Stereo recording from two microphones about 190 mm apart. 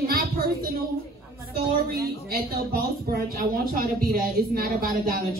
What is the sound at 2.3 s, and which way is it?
Speech, 50° right (ahead or behind).